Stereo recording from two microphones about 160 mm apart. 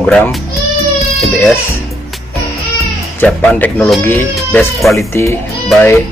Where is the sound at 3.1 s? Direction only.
10° left (ahead or behind).